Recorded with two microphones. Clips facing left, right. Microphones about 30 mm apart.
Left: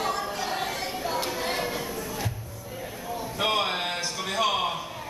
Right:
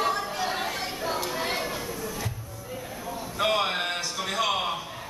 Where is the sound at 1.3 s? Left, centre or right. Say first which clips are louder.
Even; centre.